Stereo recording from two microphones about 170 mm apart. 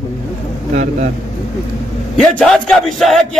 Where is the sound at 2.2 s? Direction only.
Centre (ahead or behind).